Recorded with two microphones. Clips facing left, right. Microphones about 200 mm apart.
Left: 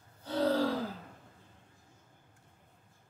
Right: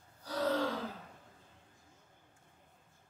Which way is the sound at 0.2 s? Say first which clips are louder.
Left 4 dB; 30° left (ahead or behind).